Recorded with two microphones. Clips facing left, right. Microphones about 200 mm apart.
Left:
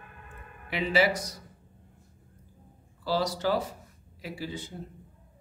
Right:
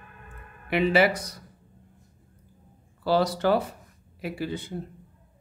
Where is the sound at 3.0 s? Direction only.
60° right (ahead or behind).